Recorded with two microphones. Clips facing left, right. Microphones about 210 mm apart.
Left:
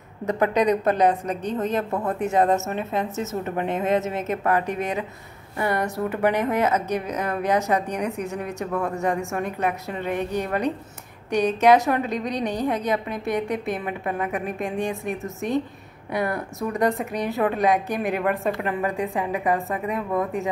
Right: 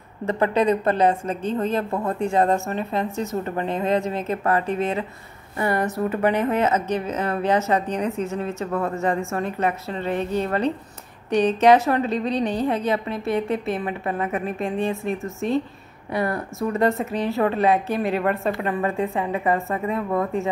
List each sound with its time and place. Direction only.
0.2 s a woman's voice: 5° left (ahead or behind)
0.6 s a woman's voice: 15° left (ahead or behind)
1.6 s speech: centre (ahead or behind)
3.9 s a woman's voice: 20° left (ahead or behind)
5.7 s speech: 5° right (ahead or behind)
6.0 s a woman's voice: 15° left (ahead or behind)
8.7 s speech: centre (ahead or behind)
9.3 s a woman's voice: 15° left (ahead or behind)
14.0 s speech: centre (ahead or behind)
14.4 s a woman's voice: 15° left (ahead or behind)
18.4 s speech: centre (ahead or behind)
18.7 s a woman's voice: 10° left (ahead or behind)
20.1 s speech: centre (ahead or behind)